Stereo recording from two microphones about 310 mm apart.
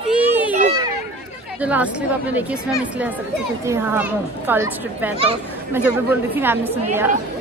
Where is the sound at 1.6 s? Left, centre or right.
Centre.